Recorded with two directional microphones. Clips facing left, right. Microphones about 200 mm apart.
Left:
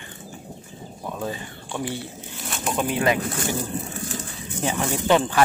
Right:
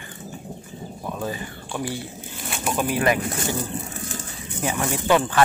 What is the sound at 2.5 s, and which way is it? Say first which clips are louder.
Bird: right 1 dB; 5° right (ahead or behind).